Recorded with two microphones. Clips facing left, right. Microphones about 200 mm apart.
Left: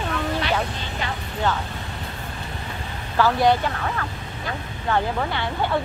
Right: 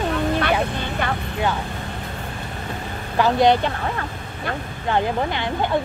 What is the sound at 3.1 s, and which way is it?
Speech, 20° right (ahead or behind).